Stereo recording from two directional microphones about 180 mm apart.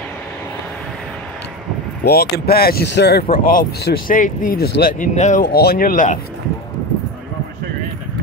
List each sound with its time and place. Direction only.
2.0 s speech: 60° left (ahead or behind)